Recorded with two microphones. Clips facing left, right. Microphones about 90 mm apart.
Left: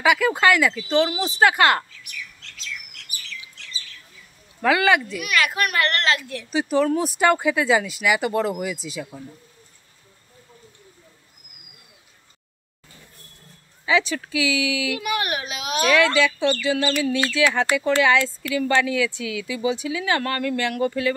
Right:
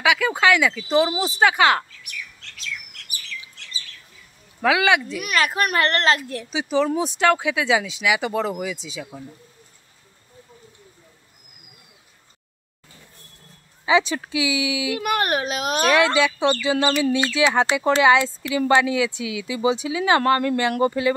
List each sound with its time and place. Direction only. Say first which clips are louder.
0.0 s speech: left 1 dB; centre (ahead or behind)
4.6 s speech: even; 5° right (ahead or behind)
5.2 s a child's voice: right 1 dB; 35° right (ahead or behind)
6.5 s speech: left 1 dB; centre (ahead or behind)
13.8 s speech: right 2 dB; 20° right (ahead or behind)
15.0 s a child's voice: right 4 dB; 45° right (ahead or behind)
16.0 s speech: even; 20° right (ahead or behind)